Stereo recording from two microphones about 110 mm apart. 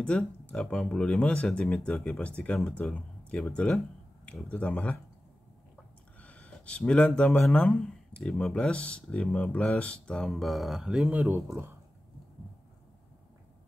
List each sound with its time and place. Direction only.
0.0 s speech: 10° left (ahead or behind)
6.2 s speech: 10° left (ahead or behind); by 11.7 s 25° right (ahead or behind)